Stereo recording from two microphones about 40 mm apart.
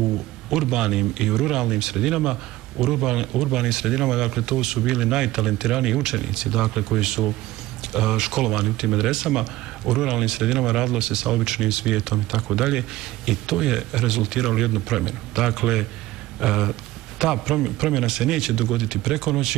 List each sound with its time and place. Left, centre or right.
0.5 s speech: centre